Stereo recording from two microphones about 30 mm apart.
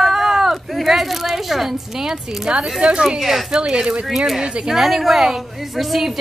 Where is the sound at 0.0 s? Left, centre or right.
Centre.